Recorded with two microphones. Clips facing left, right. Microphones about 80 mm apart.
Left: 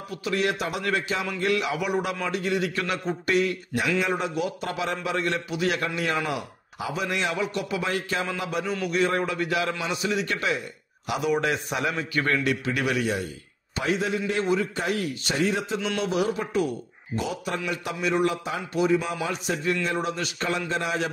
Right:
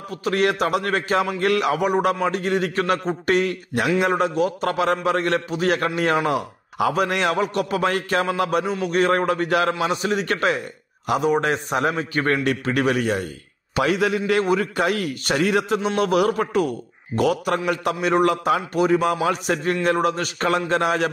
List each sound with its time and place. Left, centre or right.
0.1 s a man's voice: right
11.1 s a man's voice: right
13.7 s a man's voice: right